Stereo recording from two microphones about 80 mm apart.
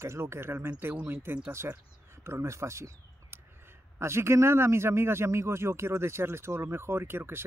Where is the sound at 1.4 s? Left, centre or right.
Right.